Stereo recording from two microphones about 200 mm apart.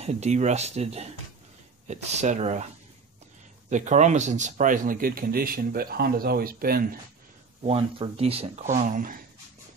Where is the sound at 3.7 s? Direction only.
35° right (ahead or behind).